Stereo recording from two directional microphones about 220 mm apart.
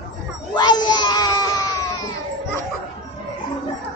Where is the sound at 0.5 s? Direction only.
20° left (ahead or behind).